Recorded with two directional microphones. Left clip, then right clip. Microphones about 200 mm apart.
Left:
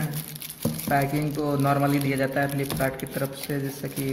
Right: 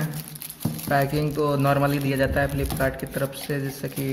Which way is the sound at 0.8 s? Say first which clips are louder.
Right 2 dB; 25° right (ahead or behind).